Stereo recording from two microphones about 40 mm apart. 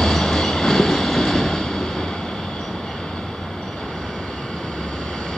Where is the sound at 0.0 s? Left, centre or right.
Centre.